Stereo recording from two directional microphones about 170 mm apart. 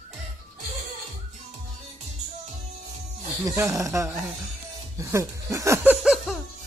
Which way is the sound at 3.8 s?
15° right (ahead or behind).